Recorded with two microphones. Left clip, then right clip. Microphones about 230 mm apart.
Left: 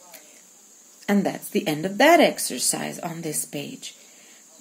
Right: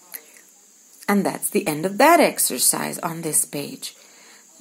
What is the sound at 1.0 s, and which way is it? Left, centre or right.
A woman's voice, centre.